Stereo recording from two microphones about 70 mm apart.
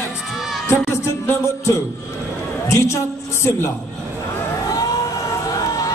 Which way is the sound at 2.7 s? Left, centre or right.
Left.